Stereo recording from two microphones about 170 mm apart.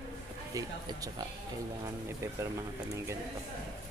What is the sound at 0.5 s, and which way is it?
Speech, 20° right (ahead or behind).